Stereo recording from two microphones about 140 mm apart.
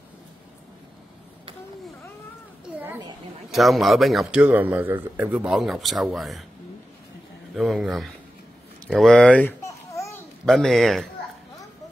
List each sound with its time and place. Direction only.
3.5 s a man's voice: centre (ahead or behind)
7.5 s a man's voice: centre (ahead or behind)
9.7 s babbling: 20° left (ahead or behind)
10.4 s a man's voice: centre (ahead or behind)